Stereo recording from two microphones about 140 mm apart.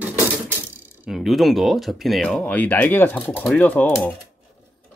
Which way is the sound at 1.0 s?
Centre (ahead or behind).